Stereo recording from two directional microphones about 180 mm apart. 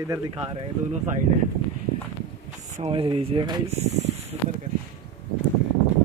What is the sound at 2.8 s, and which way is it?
Speech, 30° right (ahead or behind).